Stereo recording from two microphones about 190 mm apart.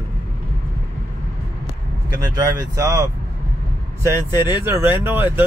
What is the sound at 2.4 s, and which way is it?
Speech, 15° right (ahead or behind).